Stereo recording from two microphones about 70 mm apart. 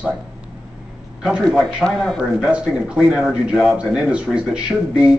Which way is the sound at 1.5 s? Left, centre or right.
Centre.